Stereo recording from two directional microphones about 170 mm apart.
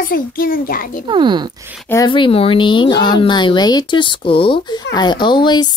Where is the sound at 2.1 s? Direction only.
30° left (ahead or behind).